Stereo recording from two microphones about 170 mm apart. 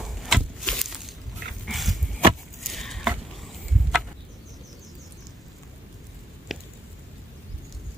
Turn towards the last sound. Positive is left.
turn(degrees=0)  # may be behind; listen again after turning